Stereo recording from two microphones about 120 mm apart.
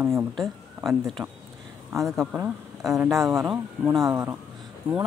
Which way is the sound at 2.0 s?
Centre (ahead or behind).